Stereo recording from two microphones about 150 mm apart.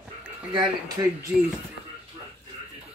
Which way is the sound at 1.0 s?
25° right (ahead or behind).